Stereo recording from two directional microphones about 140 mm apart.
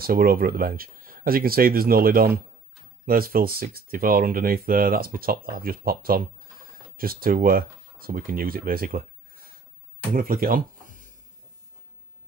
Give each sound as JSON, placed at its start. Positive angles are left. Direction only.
{"t": 0.0, "sound": "speech", "side_deg": -90}